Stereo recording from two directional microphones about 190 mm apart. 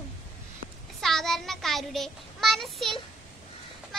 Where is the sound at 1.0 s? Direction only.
Centre (ahead or behind).